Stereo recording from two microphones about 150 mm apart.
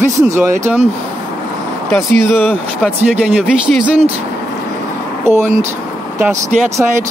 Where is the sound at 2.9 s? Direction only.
5° right (ahead or behind).